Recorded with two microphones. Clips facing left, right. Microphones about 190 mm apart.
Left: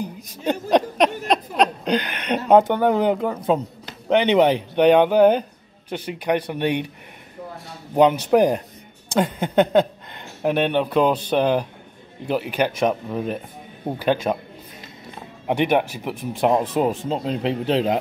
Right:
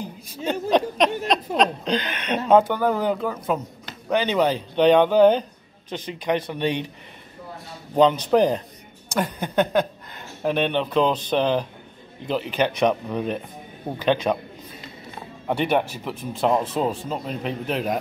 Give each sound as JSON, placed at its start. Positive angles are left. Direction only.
{"t": 0.3, "sound": "speech", "side_deg": 15}
{"t": 7.9, "sound": "speech", "side_deg": 10}
{"t": 15.4, "sound": "speech", "side_deg": 15}
{"t": 17.1, "sound": "speech", "side_deg": 25}